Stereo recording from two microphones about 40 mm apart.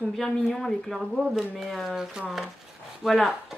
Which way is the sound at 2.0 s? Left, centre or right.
Centre.